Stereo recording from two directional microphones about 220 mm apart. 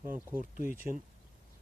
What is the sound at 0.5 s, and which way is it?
Speech, 40° right (ahead or behind).